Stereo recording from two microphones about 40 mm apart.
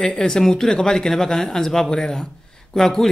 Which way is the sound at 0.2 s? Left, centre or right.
Centre.